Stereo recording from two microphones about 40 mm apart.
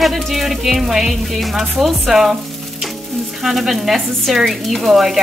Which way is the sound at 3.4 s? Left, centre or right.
Centre.